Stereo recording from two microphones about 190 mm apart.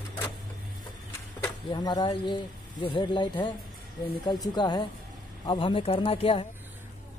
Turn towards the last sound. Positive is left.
turn(degrees=30)  # may be behind; listen again after turning